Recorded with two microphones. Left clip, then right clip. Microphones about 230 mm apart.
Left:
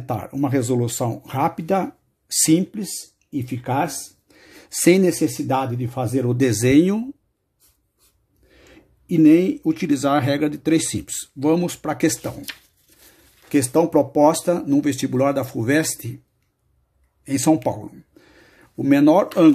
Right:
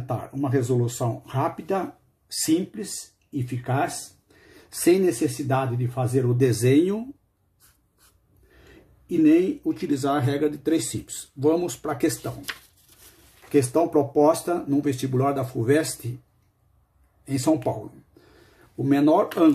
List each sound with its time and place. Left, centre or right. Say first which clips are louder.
0.0 s speech: left 4 dB; left
8.6 s speech: left 3 dB; left
13.5 s speech: left 3 dB; left
17.2 s speech: left 4 dB; left
18.9 s speech: left 4 dB; left